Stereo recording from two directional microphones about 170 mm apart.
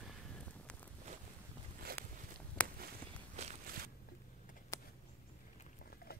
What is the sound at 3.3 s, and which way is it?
Walk, 45° right (ahead or behind).